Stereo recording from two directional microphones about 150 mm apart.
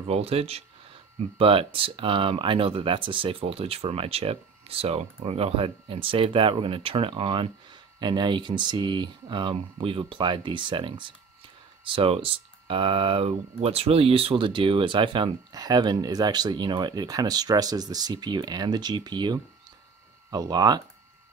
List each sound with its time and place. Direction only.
0.0 s speech: 40° right (ahead or behind)